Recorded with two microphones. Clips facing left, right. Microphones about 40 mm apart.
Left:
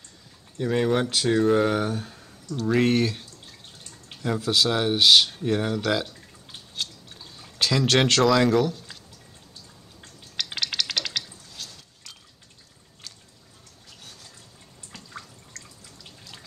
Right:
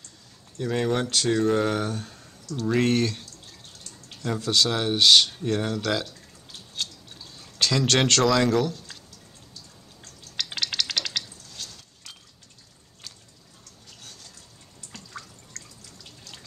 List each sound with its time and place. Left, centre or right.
0.6 s speech: centre
3.8 s a sound: centre
4.3 s speech: centre
6.7 s a sound: centre
10.3 s dishes: centre
14.9 s drip: centre